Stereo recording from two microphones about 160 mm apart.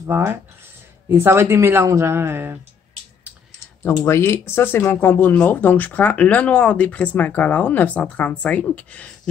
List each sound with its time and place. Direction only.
0.0 s speech: 15° right (ahead or behind)
4.0 s speech: 15° left (ahead or behind)